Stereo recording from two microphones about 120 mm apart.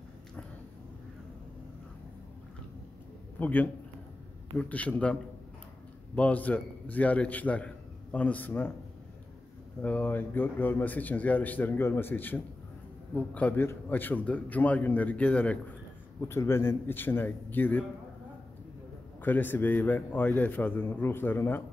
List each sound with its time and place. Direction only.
3.3 s a man's voice: 15° left (ahead or behind)
6.1 s speech: 10° left (ahead or behind)
9.8 s speech: 15° left (ahead or behind)
16.2 s speech: 20° left (ahead or behind)
19.2 s speech: 15° left (ahead or behind)